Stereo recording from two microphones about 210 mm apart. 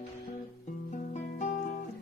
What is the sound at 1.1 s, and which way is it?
Music, 35° left (ahead or behind).